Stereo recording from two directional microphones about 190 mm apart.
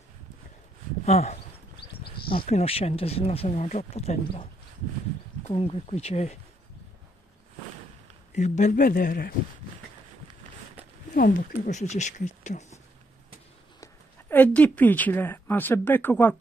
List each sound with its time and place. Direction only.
1.0 s speech: 35° left (ahead or behind)
5.5 s speech: 30° left (ahead or behind)
8.4 s speech: 40° left (ahead or behind)
11.1 s speech: 45° left (ahead or behind)
14.3 s speech: 10° left (ahead or behind)